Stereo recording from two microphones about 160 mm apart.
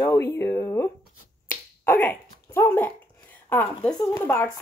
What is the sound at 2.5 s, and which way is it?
Dog, 15° left (ahead or behind).